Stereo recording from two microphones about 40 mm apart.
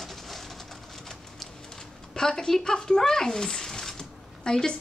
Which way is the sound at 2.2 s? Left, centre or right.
Centre.